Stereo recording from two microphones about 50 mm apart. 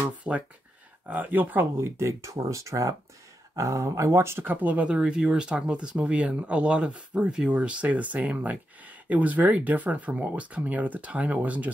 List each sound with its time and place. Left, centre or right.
0.3 s speech: centre
1.0 s speech: right
1.8 s speech: right
4.6 s speech: right
4.8 s speech: right